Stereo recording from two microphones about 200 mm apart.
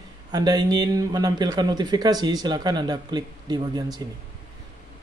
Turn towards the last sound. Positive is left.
turn(degrees=-20)  # may be behind; listen again after turning